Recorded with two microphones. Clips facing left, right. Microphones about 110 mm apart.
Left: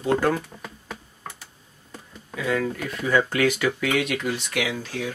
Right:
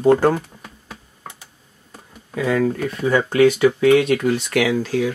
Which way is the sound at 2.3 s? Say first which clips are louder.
Right 6 dB; 40° right (ahead or behind).